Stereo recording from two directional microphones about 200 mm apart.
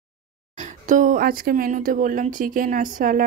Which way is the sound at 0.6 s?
40° right (ahead or behind).